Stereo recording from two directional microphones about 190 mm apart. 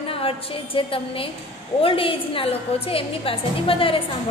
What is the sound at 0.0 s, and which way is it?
A woman's voice, 30° left (ahead or behind).